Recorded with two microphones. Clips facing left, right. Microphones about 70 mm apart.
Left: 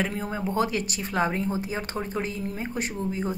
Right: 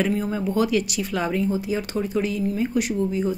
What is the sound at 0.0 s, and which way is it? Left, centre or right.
A woman's voice, left.